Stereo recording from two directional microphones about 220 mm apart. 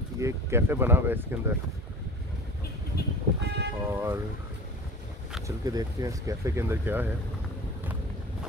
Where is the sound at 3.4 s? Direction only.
50° right (ahead or behind).